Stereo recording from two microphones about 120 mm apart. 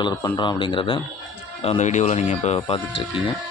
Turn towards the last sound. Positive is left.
turn(degrees=55)  # may be behind; listen again after turning